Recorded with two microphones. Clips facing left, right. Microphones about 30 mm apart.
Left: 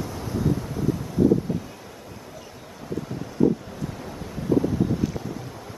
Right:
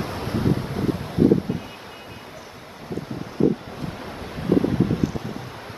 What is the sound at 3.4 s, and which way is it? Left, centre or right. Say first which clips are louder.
Wind: even; right.